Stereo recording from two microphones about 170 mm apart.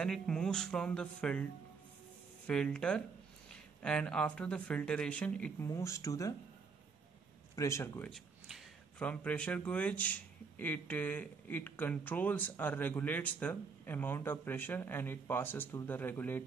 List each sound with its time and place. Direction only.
0.0 s speech: 5° left (ahead or behind)
5.7 s speech: 20° left (ahead or behind)
7.5 s speech: 15° left (ahead or behind)
8.1 s speech: centre (ahead or behind)